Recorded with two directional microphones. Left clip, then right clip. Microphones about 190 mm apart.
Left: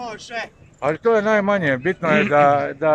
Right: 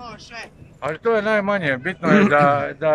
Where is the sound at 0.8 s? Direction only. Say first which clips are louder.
Left 3 dB; 10° left (ahead or behind).